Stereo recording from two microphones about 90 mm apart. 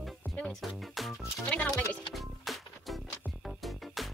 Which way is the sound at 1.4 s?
15° left (ahead or behind).